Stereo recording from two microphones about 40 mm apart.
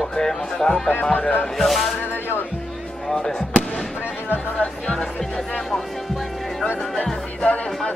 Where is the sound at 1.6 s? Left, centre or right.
Centre.